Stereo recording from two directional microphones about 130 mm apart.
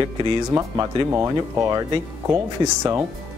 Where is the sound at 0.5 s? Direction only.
25° right (ahead or behind).